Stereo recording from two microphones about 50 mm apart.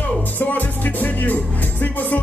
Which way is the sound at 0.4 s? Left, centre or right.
Left.